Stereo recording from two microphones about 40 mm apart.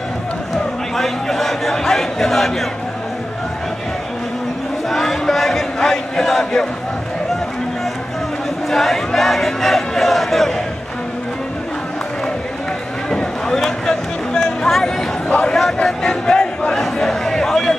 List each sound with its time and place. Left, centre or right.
0.9 s a man's voice: centre
4.8 s chant: centre
8.6 s crowd: centre
13.6 s a sound: centre
15.4 s a man's voice: centre
16.0 s crowd: centre
16.8 s a sound: centre